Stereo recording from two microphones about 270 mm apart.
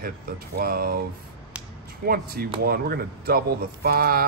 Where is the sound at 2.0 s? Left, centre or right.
Right.